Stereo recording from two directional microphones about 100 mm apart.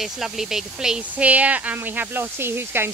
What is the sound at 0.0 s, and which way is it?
Speech, 5° right (ahead or behind).